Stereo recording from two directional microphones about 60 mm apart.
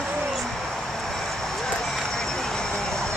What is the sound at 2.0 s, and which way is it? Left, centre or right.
Vehicle, centre.